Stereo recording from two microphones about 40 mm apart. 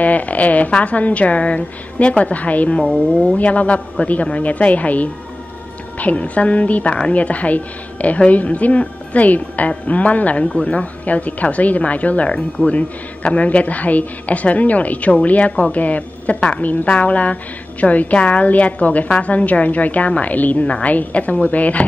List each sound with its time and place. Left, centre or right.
0.0 s a woman's voice: left
2.7 s a woman's voice: left